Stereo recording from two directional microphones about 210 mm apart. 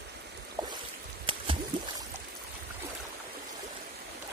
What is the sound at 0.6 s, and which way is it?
Boat, 20° right (ahead or behind).